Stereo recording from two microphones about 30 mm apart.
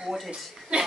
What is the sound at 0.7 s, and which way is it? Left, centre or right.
Speech, right.